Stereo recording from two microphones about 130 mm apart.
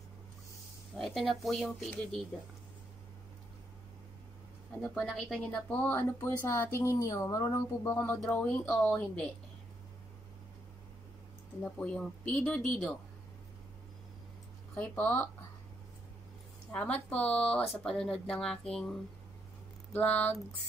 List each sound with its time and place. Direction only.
0.9 s speech: centre (ahead or behind)
4.8 s speech: centre (ahead or behind)
5.7 s speech: 15° left (ahead or behind)
11.6 s speech: 10° left (ahead or behind)
14.8 s speech: 15° left (ahead or behind)
16.7 s speech: 10° left (ahead or behind)